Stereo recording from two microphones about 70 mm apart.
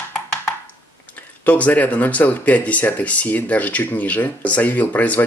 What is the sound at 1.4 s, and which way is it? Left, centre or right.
Speech, left.